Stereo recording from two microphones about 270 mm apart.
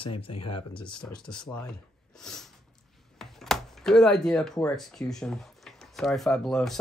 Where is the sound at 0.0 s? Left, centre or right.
Centre.